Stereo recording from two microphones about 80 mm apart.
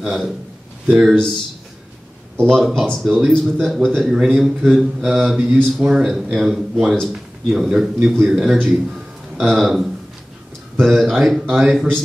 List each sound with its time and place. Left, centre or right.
0.0 s speech: centre
1.1 s speech: centre
2.4 s speech: centre